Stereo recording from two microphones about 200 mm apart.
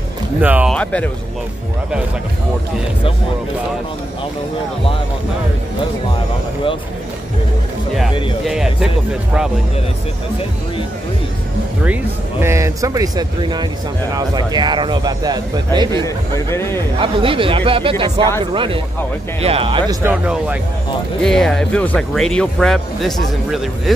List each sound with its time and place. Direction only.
0.4 s speech: 5° right (ahead or behind)
0.7 s a man's voice: 5° left (ahead or behind)
8.5 s speech: 5° right (ahead or behind)
11.8 s speech: 10° right (ahead or behind)
16.0 s a man's voice: 15° left (ahead or behind)
17.0 s speech: 25° right (ahead or behind)
20.0 s speech: 10° right (ahead or behind)
21.2 s speech: 5° left (ahead or behind)